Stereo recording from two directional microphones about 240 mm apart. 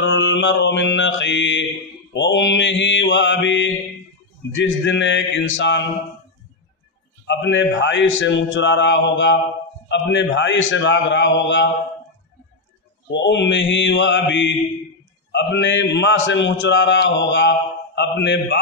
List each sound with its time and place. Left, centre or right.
0.0 s mantra: left
2.1 s a man's voice: left
7.2 s a man's voice: left
13.1 s a man's voice: left